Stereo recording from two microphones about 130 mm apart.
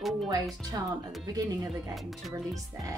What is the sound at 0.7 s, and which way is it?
Speech, 25° right (ahead or behind).